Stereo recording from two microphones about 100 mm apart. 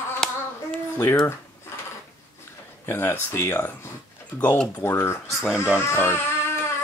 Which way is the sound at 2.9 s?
25° left (ahead or behind).